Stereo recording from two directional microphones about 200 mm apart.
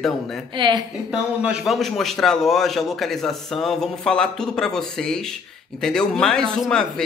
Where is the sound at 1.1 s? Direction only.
5° right (ahead or behind).